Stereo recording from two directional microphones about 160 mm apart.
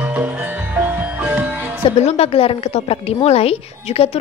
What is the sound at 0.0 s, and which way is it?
Music, 10° right (ahead or behind).